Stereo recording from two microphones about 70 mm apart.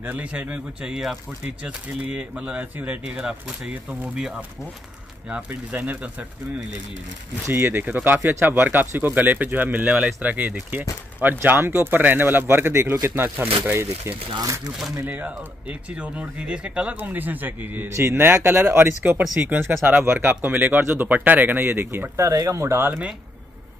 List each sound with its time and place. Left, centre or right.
0.0 s speech: right
3.3 s speech: centre
5.5 s speech: right
7.4 s speech: right
15.0 s speech: right
19.3 s speech: centre
19.9 s speech: right
22.2 s speech: right